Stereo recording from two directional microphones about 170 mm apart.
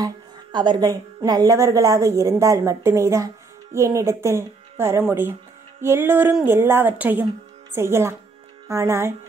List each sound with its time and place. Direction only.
0.0 s speech: 25° right (ahead or behind)